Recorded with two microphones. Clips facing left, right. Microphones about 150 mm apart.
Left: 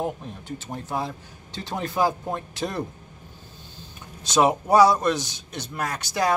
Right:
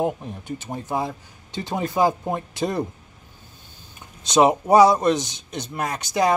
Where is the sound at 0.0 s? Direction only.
15° right (ahead or behind).